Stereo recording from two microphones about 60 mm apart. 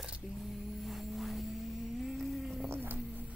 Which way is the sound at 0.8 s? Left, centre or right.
Centre.